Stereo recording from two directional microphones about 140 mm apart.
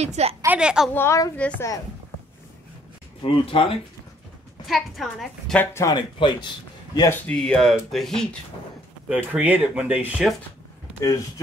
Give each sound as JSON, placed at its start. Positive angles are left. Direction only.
{"t": 0.0, "sound": "a woman's voice", "side_deg": -50}
{"t": 0.5, "sound": "speech", "side_deg": -5}
{"t": 0.9, "sound": "a woman's voice", "side_deg": 20}
{"t": 3.2, "sound": "speech", "side_deg": 40}
{"t": 4.6, "sound": "speech", "side_deg": 0}
{"t": 5.6, "sound": "a woman's voice", "side_deg": 20}
{"t": 5.9, "sound": "speech", "side_deg": 35}
{"t": 7.2, "sound": "speech", "side_deg": 5}
{"t": 9.1, "sound": "speech", "side_deg": -10}